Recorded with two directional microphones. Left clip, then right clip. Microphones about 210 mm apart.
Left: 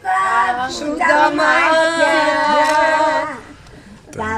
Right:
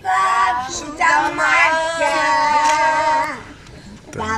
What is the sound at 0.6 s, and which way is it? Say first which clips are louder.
Child singing: left 2 dB; 50° left (ahead or behind).